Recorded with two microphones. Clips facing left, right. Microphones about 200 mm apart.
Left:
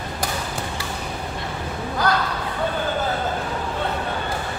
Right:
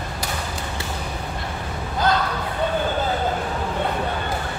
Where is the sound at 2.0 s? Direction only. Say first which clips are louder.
Right 1 dB; 25° right (ahead or behind).